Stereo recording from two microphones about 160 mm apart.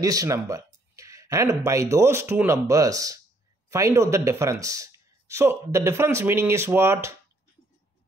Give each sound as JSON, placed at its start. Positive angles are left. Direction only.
{"t": 0.0, "sound": "speech", "side_deg": -20}